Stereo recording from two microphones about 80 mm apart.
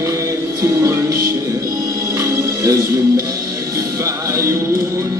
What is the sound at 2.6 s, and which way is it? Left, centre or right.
Music, right.